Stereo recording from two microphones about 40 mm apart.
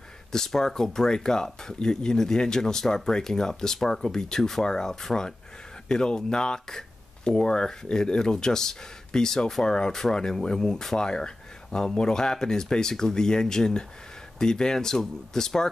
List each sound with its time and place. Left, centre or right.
0.3 s speech: centre